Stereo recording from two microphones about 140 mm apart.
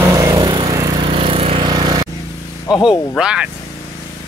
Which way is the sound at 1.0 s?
40° right (ahead or behind).